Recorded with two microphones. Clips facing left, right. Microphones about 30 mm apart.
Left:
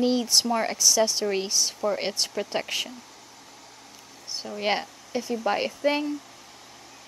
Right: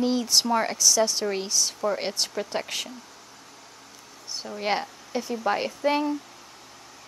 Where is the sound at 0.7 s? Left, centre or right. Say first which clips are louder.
Even; centre.